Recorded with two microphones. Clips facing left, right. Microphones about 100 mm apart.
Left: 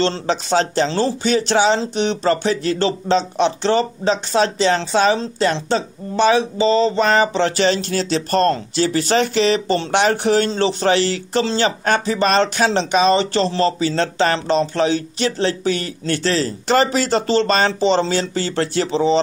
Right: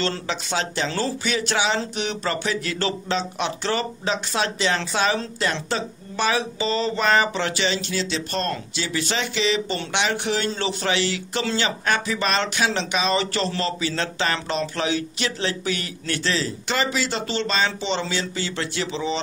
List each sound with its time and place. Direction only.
0.0 s speech: 35° left (ahead or behind)